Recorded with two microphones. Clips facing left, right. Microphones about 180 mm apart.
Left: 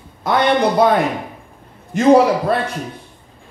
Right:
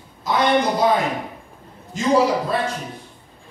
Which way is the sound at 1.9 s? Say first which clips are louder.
Left 6 dB; 60° left (ahead or behind).